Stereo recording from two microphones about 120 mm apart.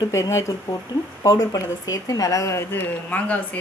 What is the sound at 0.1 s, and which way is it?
Speech, 25° left (ahead or behind).